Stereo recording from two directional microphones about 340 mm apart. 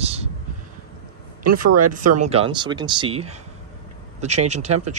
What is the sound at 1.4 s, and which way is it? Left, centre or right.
Speech, right.